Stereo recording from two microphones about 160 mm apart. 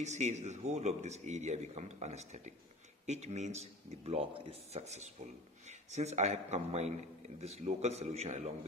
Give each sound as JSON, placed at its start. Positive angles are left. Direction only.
{"t": 0.0, "sound": "speech", "side_deg": -45}